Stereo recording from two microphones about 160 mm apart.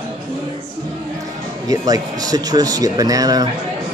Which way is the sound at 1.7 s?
20° right (ahead or behind).